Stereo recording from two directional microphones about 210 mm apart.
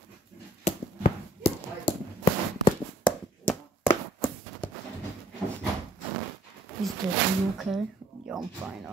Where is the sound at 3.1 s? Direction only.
10° left (ahead or behind).